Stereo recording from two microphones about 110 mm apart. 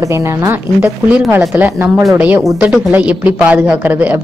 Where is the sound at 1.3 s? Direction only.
20° right (ahead or behind).